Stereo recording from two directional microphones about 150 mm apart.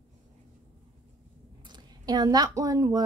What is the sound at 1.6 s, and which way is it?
A woman's voice, 30° right (ahead or behind).